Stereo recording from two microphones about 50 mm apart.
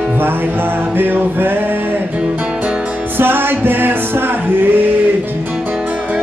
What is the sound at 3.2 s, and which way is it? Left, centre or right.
Music, right.